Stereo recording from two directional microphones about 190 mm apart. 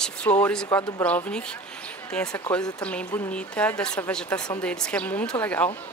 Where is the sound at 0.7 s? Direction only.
20° left (ahead or behind).